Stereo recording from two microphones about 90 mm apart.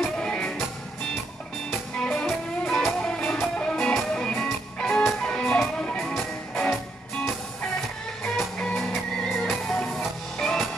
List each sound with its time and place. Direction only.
0.2 s music: 10° left (ahead or behind)
1.7 s music: 20° left (ahead or behind)
2.2 s music: 5° left (ahead or behind)
8.5 s music: 5° left (ahead or behind)